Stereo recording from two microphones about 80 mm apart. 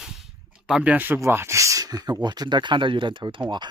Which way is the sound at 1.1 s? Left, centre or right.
Right.